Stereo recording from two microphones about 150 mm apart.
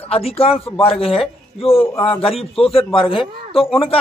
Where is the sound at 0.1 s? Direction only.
40° left (ahead or behind).